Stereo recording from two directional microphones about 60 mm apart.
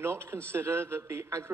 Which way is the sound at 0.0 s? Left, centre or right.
Right.